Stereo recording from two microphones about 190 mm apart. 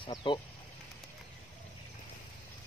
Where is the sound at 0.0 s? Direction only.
25° left (ahead or behind).